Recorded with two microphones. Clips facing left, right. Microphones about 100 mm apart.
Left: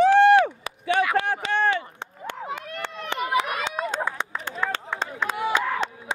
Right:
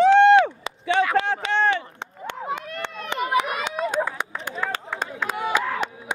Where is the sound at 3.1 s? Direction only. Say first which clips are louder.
Right 2 dB; 15° right (ahead or behind).